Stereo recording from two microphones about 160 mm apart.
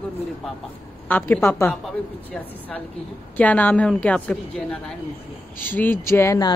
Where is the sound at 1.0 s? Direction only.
10° left (ahead or behind).